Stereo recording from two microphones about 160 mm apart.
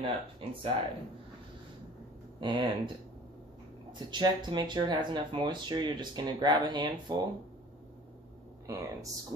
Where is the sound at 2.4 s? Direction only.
30° right (ahead or behind).